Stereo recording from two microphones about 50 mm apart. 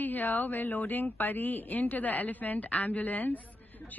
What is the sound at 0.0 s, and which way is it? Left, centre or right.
Speech, left.